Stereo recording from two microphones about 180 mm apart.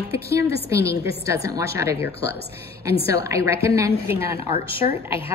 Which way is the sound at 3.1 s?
15° right (ahead or behind).